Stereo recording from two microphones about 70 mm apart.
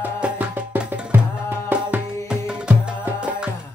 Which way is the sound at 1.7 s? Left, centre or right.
Centre.